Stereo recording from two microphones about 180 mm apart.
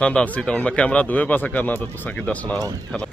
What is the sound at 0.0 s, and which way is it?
Speech, 5° left (ahead or behind).